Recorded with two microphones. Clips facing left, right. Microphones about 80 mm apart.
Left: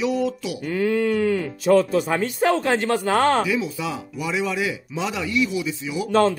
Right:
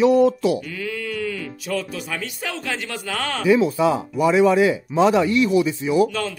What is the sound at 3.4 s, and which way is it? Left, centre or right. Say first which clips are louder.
Speech: right 8 dB; right.